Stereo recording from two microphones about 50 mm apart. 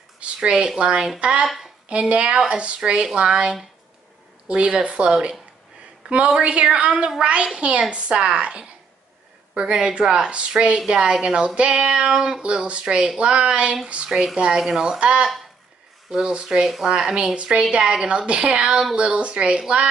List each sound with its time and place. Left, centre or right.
0.2 s a woman's voice: centre
7.4 s a woman's voice: right